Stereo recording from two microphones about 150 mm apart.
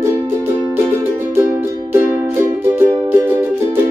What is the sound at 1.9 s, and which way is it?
Music, 15° right (ahead or behind).